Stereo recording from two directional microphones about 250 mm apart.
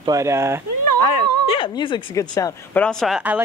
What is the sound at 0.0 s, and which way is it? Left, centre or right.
Speech, centre.